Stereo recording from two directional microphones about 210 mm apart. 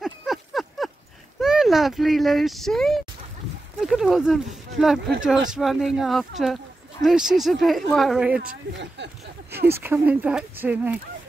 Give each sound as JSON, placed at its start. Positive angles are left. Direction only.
{"t": 0.0, "sound": "a sound", "side_deg": 0}
{"t": 1.4, "sound": "speech", "side_deg": 0}
{"t": 8.4, "sound": "speech", "side_deg": -50}
{"t": 9.8, "sound": "speech", "side_deg": -10}